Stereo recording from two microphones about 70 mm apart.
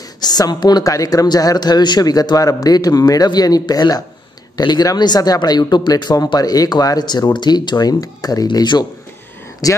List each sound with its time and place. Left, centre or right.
0.2 s speech: left
0.8 s a man's voice: left
9.6 s a man's voice: left